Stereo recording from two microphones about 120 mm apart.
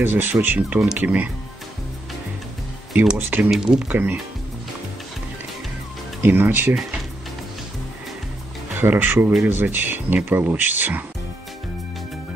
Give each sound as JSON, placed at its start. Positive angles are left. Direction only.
{"t": 0.0, "sound": "speech", "side_deg": -15}
{"t": 2.9, "sound": "speech", "side_deg": -10}
{"t": 3.4, "sound": "speech", "side_deg": -5}
{"t": 6.2, "sound": "speech", "side_deg": -15}
{"t": 8.7, "sound": "speech", "side_deg": -15}